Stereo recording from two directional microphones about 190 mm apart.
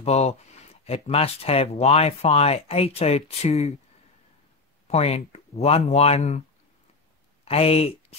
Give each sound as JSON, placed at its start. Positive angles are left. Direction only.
{"t": 0.0, "sound": "speech", "side_deg": 35}
{"t": 4.8, "sound": "speech", "side_deg": 35}
{"t": 7.4, "sound": "speech", "side_deg": 30}